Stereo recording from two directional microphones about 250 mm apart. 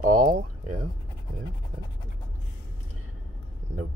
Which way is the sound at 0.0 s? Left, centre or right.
Right.